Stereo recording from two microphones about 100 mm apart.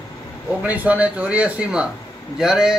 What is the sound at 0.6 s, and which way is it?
Speech, 15° right (ahead or behind).